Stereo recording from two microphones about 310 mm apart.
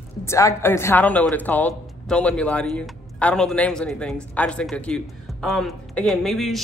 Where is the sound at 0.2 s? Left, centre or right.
Centre.